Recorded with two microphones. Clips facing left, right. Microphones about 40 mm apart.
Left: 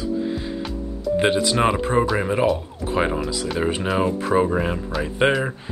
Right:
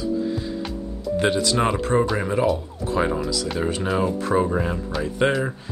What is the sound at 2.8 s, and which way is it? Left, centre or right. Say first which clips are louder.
Speech: left 1 dB; left.